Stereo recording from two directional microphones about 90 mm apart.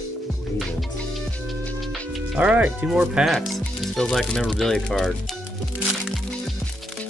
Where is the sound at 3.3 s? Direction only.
Centre (ahead or behind).